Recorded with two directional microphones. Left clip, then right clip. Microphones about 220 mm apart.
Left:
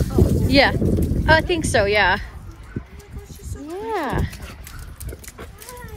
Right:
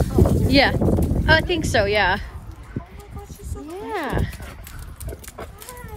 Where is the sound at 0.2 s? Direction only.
25° right (ahead or behind).